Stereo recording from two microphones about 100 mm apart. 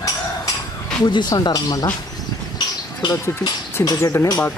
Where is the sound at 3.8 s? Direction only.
35° left (ahead or behind).